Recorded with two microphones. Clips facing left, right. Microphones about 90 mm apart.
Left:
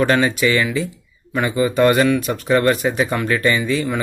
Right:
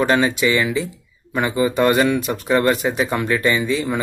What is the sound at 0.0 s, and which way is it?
Speech, 15° right (ahead or behind).